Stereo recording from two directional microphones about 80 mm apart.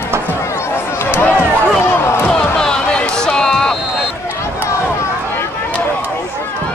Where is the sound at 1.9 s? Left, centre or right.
Left.